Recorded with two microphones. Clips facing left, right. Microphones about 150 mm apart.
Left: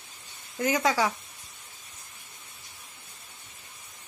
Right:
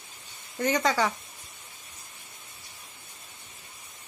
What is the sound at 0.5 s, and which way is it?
Speech, 5° left (ahead or behind).